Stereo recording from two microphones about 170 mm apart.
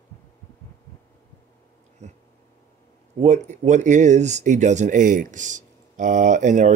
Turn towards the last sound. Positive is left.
turn(degrees=-45)  # may be behind; listen again after turning